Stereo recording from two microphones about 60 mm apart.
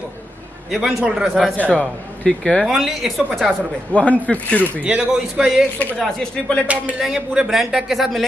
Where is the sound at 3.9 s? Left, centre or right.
Left.